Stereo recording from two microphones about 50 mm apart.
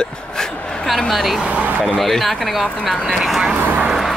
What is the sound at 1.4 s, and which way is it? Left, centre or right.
Speech, right.